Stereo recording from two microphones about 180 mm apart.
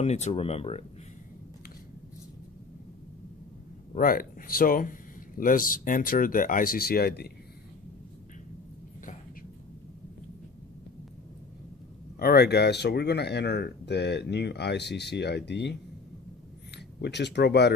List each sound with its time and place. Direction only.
0.0 s speech: 40° left (ahead or behind)
3.9 s speech: 50° left (ahead or behind)
12.2 s speech: 60° left (ahead or behind)